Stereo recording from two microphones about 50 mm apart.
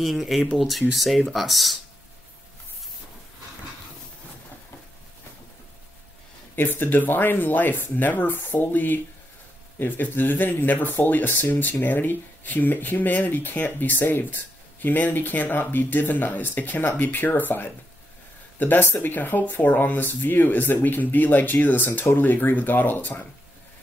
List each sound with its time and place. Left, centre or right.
0.0 s speech: centre
6.5 s speech: left